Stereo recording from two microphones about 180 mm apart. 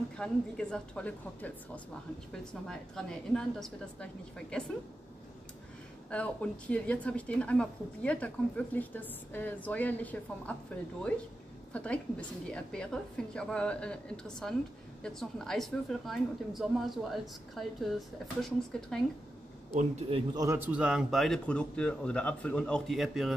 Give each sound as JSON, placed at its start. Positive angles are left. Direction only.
{"t": 0.2, "sound": "a woman's voice", "side_deg": 5}
{"t": 2.7, "sound": "a woman's voice", "side_deg": 5}
{"t": 6.0, "sound": "speech", "side_deg": 5}
{"t": 11.7, "sound": "a woman's voice", "side_deg": 5}
{"t": 19.7, "sound": "a man's voice", "side_deg": -35}
{"t": 20.3, "sound": "a woman's voice", "side_deg": -15}